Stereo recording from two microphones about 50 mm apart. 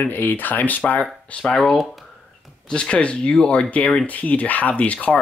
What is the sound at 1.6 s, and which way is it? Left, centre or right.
Speech, centre.